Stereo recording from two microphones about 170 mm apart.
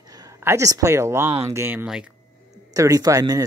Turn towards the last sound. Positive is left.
turn(degrees=-20)  # may be behind; listen again after turning